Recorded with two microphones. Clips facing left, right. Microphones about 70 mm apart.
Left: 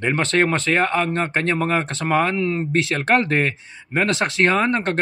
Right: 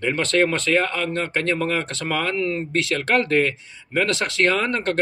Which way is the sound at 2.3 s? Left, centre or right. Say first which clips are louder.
Left 2 dB; centre.